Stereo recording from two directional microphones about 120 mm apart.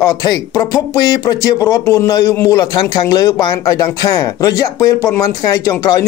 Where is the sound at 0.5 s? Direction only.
35° left (ahead or behind).